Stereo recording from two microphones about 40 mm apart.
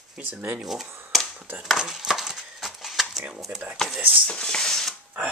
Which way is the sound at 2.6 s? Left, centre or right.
Centre.